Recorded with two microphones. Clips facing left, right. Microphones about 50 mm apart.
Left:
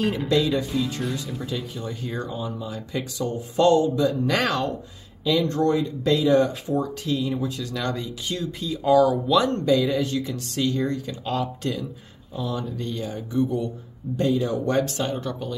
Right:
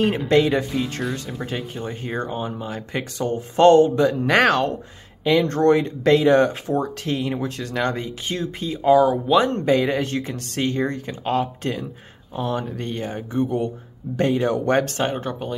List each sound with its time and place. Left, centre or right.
0.3 s speech: right
12.4 s speech: right
14.1 s speech: right